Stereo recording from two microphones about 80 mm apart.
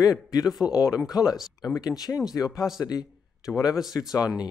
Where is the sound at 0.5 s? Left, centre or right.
Centre.